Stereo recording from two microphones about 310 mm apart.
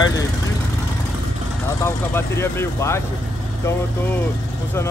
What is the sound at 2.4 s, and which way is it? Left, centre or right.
Speech, centre.